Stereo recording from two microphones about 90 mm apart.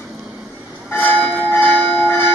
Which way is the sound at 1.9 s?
20° left (ahead or behind).